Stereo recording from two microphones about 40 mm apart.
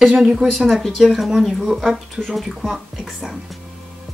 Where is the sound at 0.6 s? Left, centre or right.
Centre.